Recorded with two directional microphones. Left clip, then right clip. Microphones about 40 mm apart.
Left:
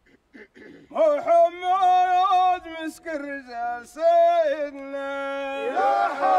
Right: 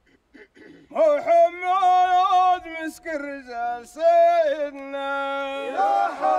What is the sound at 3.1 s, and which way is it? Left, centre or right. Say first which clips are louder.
Male singing: right 1 dB; right.